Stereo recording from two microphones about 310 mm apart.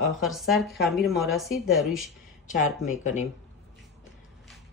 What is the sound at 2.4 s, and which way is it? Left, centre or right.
Speech, left.